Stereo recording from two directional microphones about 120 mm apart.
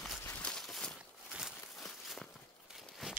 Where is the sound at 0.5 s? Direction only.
5° left (ahead or behind).